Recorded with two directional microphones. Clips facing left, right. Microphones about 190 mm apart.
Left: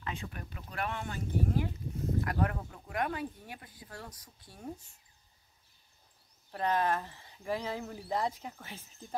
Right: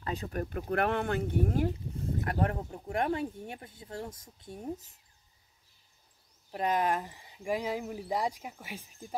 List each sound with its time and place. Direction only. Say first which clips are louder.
0.0 s speech: right 7 dB; 40° right (ahead or behind)
2.1 s speech: right 2 dB; 30° right (ahead or behind)
6.5 s speech: right 1 dB; 15° right (ahead or behind)